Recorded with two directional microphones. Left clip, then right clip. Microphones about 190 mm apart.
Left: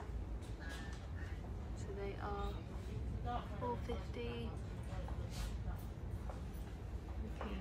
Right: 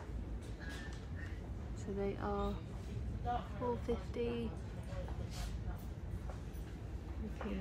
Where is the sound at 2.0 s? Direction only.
5° left (ahead or behind).